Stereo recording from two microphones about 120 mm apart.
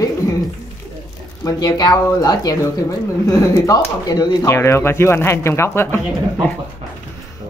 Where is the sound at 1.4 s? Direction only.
35° left (ahead or behind).